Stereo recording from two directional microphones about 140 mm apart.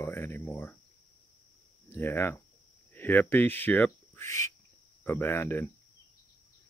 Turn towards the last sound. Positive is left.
turn(degrees=15)  # may be behind; listen again after turning